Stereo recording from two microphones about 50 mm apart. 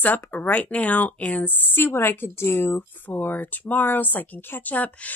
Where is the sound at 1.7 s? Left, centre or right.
Left.